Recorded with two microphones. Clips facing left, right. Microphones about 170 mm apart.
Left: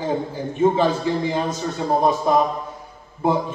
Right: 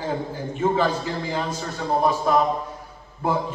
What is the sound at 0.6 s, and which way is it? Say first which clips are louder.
A man's voice: left 4 dB; 20° left (ahead or behind).